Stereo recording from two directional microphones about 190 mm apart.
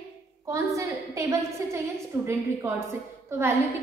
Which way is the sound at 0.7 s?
15° right (ahead or behind).